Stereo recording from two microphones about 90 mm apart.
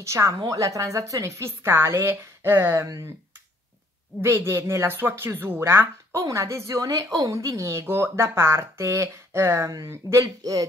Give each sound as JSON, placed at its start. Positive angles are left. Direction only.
{"t": 0.0, "sound": "a woman's voice", "side_deg": -35}
{"t": 4.2, "sound": "a woman's voice", "side_deg": -30}